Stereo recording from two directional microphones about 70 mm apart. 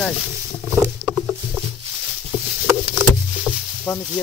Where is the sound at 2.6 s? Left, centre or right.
Centre.